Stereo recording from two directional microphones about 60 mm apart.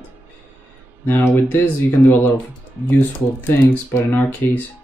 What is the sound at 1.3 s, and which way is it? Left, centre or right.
Speech, left.